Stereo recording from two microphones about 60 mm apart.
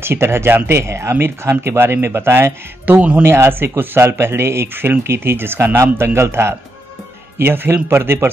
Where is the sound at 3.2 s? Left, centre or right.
Right.